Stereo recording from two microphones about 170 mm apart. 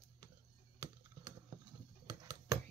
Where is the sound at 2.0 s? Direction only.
20° right (ahead or behind).